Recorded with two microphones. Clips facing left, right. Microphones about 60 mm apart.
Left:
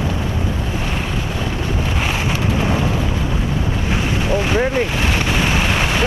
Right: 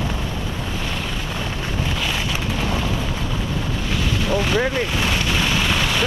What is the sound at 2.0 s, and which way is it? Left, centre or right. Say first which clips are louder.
Wind noise: left 4 dB; left.